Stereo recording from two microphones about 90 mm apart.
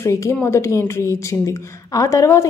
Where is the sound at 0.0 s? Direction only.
30° left (ahead or behind).